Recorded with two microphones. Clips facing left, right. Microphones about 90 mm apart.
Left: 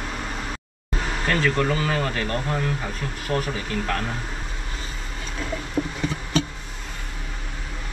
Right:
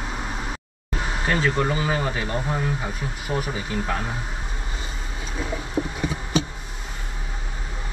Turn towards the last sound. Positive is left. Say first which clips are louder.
# even
turn(degrees=-10)  # may be behind; listen again after turning